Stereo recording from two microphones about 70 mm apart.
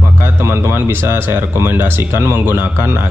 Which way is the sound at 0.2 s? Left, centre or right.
Right.